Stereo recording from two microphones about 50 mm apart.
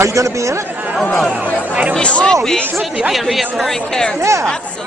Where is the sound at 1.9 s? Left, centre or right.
Centre.